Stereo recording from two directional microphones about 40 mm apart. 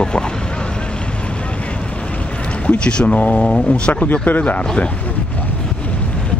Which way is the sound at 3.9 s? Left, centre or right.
Left.